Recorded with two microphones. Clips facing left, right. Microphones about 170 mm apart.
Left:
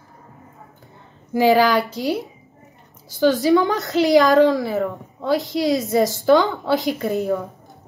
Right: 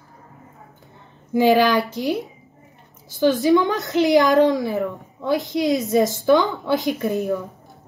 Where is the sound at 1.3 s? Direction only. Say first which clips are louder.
Even; 20° right (ahead or behind).